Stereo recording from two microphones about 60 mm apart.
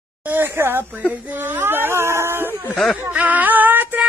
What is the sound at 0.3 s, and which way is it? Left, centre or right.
Speech, right.